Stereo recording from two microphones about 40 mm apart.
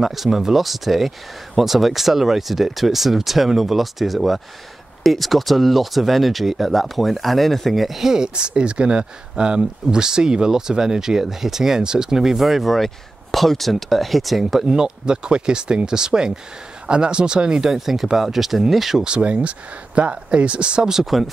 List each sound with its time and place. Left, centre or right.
0.0 s speech: centre
8.1 s speech: centre
14.7 s speech: centre
17.6 s speech: centre
19.0 s speech: right
20.9 s speech: centre